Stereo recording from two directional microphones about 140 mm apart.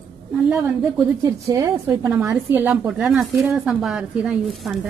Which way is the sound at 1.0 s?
25° right (ahead or behind).